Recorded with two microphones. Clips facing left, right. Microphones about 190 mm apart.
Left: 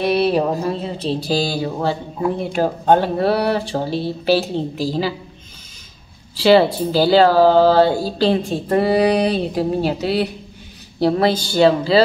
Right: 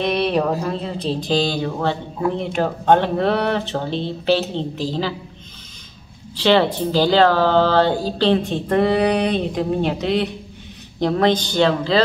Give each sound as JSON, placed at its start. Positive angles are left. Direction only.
{"t": 0.0, "sound": "a sound", "side_deg": 5}
{"t": 0.4, "sound": "speech", "side_deg": 10}
{"t": 6.3, "sound": "speech", "side_deg": 10}